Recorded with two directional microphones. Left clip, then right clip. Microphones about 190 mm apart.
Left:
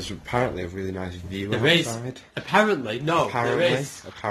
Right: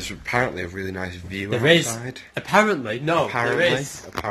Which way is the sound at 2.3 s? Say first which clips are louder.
Right 2 dB; 35° right (ahead or behind).